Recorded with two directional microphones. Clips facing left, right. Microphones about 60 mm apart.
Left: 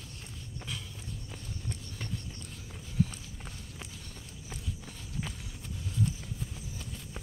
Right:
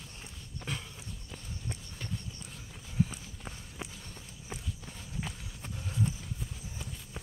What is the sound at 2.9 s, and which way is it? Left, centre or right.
Run, centre.